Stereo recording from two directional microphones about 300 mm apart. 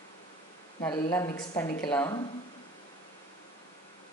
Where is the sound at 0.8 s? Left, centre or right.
Centre.